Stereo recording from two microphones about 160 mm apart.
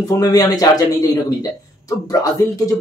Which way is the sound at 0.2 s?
25° left (ahead or behind).